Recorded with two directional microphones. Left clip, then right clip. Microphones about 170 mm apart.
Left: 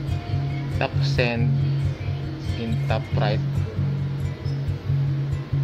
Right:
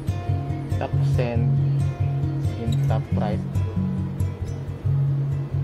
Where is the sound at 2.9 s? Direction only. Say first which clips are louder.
Left 4 dB; centre (ahead or behind).